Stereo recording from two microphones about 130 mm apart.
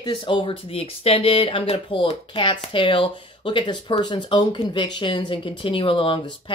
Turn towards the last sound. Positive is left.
turn(degrees=35)  # may be behind; listen again after turning